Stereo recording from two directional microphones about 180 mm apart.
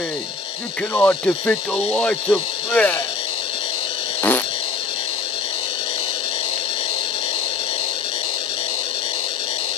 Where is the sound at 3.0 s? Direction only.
30° left (ahead or behind).